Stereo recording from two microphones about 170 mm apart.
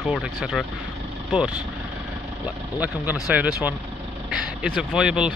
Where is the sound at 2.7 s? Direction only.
10° right (ahead or behind).